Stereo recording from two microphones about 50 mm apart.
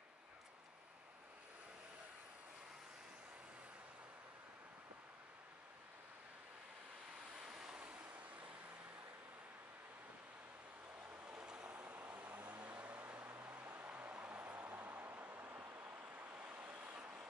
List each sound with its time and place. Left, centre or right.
7.4 s waves: centre
7.8 s waves: right
11.2 s vehicle: right
13.0 s vehicle: right